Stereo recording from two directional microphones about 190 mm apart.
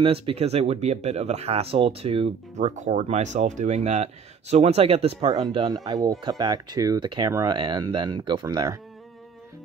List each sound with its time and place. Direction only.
0.0 s speech: 30° right (ahead or behind)